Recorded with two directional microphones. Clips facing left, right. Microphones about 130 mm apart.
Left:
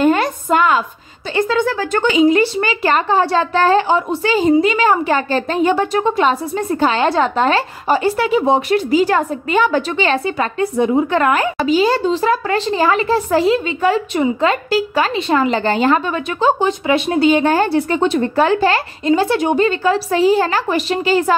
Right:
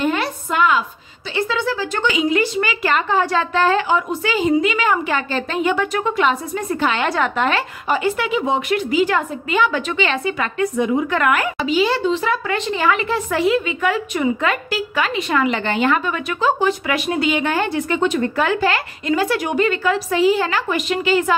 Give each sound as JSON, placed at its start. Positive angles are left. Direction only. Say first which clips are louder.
{"t": 0.0, "sound": "a sound", "louder": "left 6 dB", "side_deg": 40}
{"t": 1.3, "sound": "a woman's voice", "louder": "left 5 dB", "side_deg": 45}
{"t": 2.0, "sound": "speech", "louder": "left 6 dB", "side_deg": 35}
{"t": 11.5, "sound": "speech", "louder": "left 4 dB", "side_deg": 40}